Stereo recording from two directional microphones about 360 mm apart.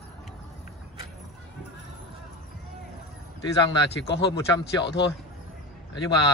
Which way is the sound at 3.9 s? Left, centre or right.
Left.